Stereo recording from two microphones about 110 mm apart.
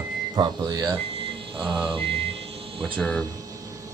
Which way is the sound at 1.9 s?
55° right (ahead or behind).